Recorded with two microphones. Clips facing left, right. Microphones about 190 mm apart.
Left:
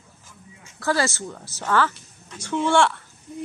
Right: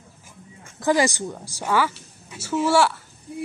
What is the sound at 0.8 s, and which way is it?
A woman's voice, 15° right (ahead or behind).